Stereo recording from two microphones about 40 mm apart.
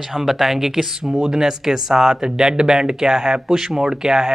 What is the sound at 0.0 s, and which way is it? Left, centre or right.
Speech, centre.